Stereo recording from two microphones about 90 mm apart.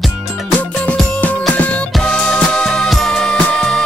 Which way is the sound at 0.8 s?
15° left (ahead or behind).